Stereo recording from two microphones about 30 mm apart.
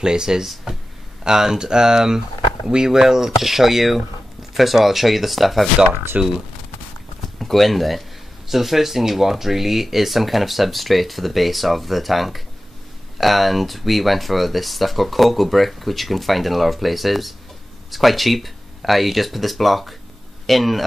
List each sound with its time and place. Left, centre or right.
0.0 s speech: right; by 5.7 s centre
6.2 s speech: right
7.3 s speech: centre